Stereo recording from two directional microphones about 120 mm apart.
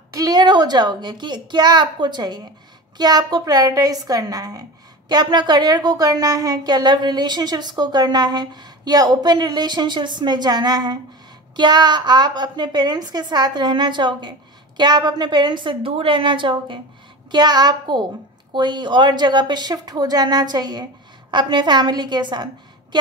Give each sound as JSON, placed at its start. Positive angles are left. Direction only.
{"t": 0.1, "sound": "a woman's voice", "side_deg": -30}